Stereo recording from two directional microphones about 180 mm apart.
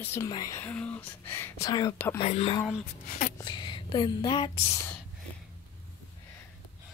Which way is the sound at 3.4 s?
25° left (ahead or behind).